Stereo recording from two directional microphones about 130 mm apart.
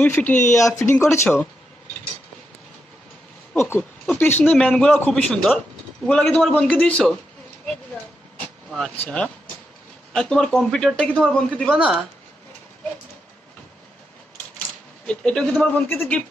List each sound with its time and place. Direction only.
0.0 s a man's voice: 10° left (ahead or behind)
0.5 s a man's voice: 25° left (ahead or behind)
3.5 s a man's voice: 15° left (ahead or behind)
8.4 s vehicle: 5° left (ahead or behind)
9.0 s a man's voice: 10° left (ahead or behind)
15.0 s a man's voice: 5° left (ahead or behind)